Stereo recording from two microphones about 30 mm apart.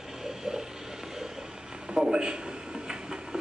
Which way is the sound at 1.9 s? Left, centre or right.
Right.